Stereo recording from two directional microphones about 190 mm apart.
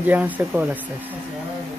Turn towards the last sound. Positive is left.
turn(degrees=-10)  # may be behind; listen again after turning